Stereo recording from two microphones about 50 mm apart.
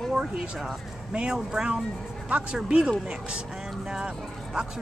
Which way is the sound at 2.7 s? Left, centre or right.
Centre.